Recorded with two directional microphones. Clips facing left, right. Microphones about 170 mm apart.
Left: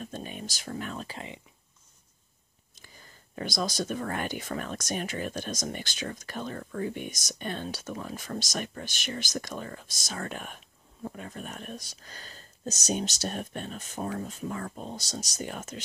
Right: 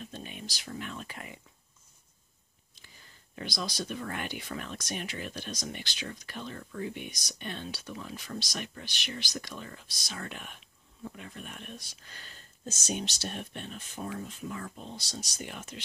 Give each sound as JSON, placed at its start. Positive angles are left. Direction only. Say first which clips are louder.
{"t": 0.0, "sound": "speech", "louder": "left 4 dB", "side_deg": 45}
{"t": 3.3, "sound": "speech", "louder": "left 5 dB", "side_deg": 45}